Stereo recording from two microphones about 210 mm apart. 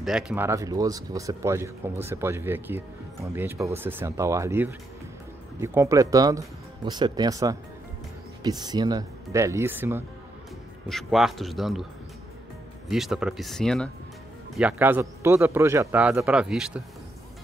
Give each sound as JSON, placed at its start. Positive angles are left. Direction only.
{"t": 0.0, "sound": "speech", "side_deg": -5}
{"t": 10.9, "sound": "speech", "side_deg": 0}
{"t": 12.8, "sound": "speech", "side_deg": 0}